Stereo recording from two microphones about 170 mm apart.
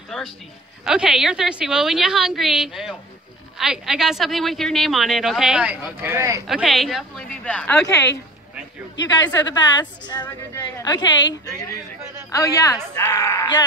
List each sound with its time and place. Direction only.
0.8 s speech: 5° right (ahead or behind)
6.4 s speech: centre (ahead or behind)
9.0 s a woman's voice: 25° left (ahead or behind)